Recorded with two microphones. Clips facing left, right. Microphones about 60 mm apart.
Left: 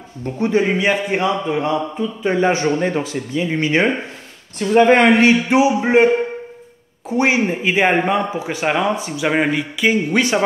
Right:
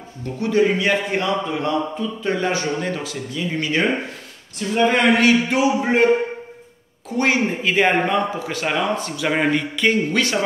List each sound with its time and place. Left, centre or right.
0.2 s a man's voice: left
4.6 s speech: left
5.1 s a man's voice: left
7.1 s a man's voice: centre
10.1 s a man's voice: left